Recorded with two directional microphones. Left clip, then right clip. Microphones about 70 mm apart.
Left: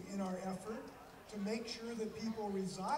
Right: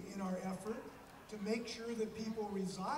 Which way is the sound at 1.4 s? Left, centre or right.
Right.